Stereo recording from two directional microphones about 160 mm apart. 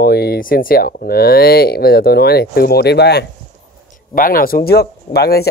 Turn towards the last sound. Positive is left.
turn(degrees=85)